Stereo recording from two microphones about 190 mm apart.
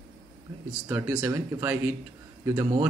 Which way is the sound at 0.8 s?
10° right (ahead or behind).